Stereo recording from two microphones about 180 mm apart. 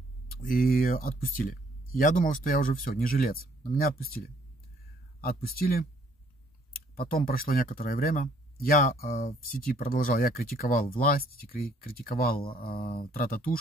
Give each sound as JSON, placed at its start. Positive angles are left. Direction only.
{"t": 0.3, "sound": "speech", "side_deg": 55}
{"t": 5.2, "sound": "speech", "side_deg": 55}